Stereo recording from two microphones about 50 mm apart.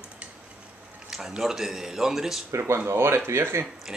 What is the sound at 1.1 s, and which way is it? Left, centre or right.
A man's voice, centre.